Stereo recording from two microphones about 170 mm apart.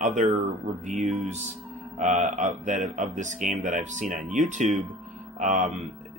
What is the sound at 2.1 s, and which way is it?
Speech, 45° right (ahead or behind).